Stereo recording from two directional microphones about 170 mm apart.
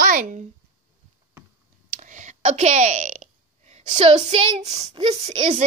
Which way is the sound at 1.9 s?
50° right (ahead or behind).